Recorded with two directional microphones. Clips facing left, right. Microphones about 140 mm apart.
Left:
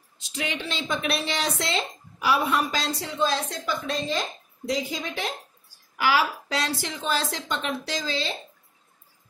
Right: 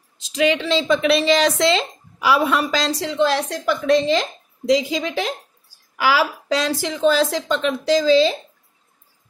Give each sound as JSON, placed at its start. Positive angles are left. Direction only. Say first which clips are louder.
{"t": 0.2, "sound": "a woman's voice", "louder": "right 12 dB", "side_deg": -90}